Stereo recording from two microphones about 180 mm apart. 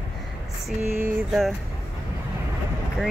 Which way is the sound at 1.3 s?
Centre (ahead or behind).